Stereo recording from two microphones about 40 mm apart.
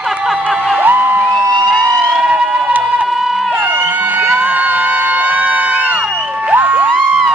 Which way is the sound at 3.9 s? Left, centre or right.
Right.